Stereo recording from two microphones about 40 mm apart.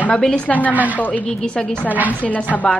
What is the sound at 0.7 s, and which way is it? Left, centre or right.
Speech, right.